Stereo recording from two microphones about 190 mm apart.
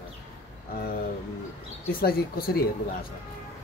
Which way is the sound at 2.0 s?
50° left (ahead or behind).